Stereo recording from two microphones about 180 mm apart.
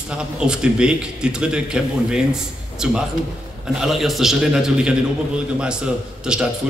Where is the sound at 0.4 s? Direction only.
5° right (ahead or behind).